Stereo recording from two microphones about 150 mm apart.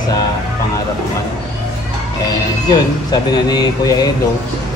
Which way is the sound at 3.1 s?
25° left (ahead or behind).